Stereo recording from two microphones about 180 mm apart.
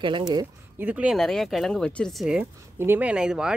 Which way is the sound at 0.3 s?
20° right (ahead or behind).